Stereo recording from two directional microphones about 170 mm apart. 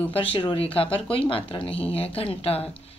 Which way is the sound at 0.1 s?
30° left (ahead or behind).